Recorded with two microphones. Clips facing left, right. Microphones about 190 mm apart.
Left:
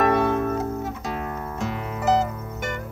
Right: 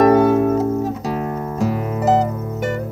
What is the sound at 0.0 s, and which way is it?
Music, 35° right (ahead or behind).